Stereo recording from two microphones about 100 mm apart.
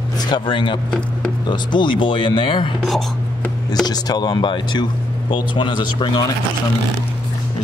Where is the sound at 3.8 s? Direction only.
40° left (ahead or behind).